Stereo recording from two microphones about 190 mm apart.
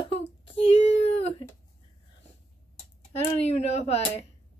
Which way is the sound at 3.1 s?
35° left (ahead or behind).